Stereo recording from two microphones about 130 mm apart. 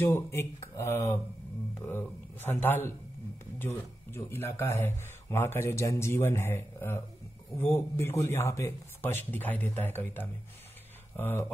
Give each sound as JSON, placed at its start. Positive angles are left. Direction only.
{"t": 0.0, "sound": "speech", "side_deg": 20}